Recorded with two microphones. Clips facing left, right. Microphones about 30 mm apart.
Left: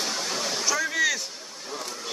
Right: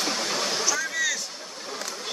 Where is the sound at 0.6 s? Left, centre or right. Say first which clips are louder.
Left 2 dB; centre.